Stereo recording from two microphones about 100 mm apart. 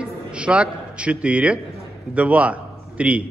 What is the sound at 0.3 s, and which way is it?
A man's voice, 10° right (ahead or behind).